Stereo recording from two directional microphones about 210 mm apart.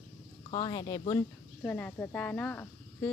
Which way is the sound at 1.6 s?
5° left (ahead or behind).